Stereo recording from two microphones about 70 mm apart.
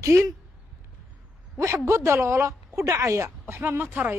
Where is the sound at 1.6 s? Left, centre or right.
Right.